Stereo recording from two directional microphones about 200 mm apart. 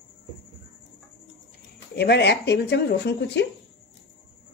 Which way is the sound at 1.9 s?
55° left (ahead or behind).